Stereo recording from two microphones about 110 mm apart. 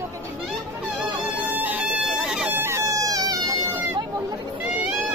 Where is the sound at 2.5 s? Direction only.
25° right (ahead or behind).